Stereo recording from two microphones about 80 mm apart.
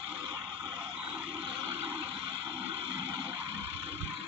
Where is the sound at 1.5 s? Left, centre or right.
Right.